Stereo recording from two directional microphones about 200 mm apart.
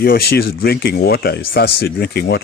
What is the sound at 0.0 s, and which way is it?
Speech, 50° left (ahead or behind).